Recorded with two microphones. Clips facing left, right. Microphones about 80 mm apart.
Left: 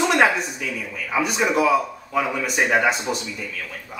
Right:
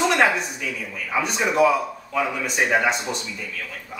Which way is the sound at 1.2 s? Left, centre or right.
Centre.